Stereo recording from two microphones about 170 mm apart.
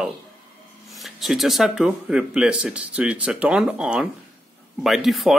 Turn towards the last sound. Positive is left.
turn(degrees=0)  # may be behind; listen again after turning